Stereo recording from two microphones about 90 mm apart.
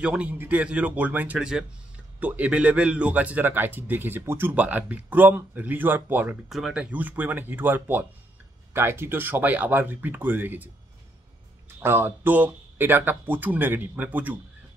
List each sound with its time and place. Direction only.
0.0 s a man's voice: 15° right (ahead or behind)
6.5 s a man's voice: 10° right (ahead or behind)
11.8 s a man's voice: 25° right (ahead or behind)